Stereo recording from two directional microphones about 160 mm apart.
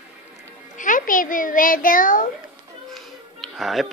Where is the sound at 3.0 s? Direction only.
Centre (ahead or behind).